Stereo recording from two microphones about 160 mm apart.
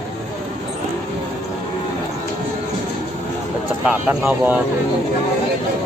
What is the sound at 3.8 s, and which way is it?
Speech, 10° right (ahead or behind).